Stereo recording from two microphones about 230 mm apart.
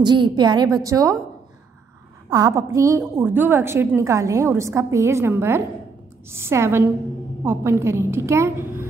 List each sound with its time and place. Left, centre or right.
0.0 s a woman's voice: centre
2.2 s a woman's voice: centre